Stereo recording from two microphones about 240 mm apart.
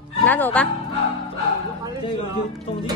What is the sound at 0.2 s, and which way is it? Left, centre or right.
Speech, centre.